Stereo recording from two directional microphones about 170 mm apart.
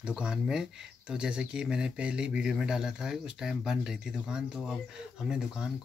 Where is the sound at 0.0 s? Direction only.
5° right (ahead or behind).